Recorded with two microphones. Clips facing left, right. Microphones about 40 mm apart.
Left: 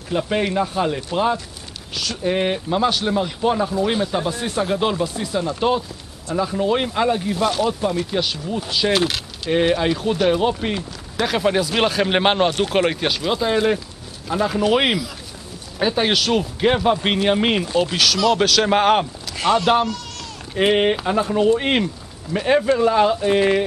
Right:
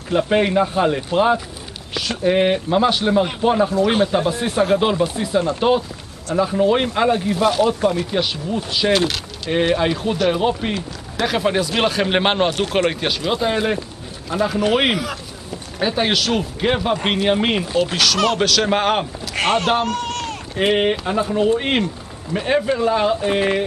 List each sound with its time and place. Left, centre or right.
0.1 s speech: centre
19.3 s speech: right
19.8 s a sound: right
20.5 s speech: centre